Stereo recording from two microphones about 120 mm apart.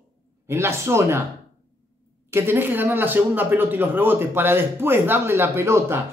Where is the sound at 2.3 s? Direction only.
20° right (ahead or behind).